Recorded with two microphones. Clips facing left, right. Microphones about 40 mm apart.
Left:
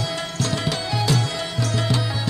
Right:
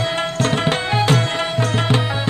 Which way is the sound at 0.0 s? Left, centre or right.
Right.